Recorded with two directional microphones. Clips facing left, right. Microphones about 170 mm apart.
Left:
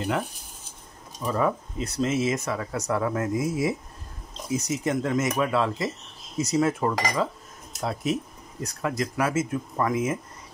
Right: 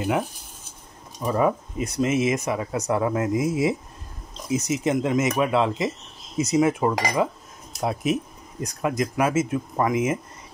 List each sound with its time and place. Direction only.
1.2 s speech: 15° right (ahead or behind)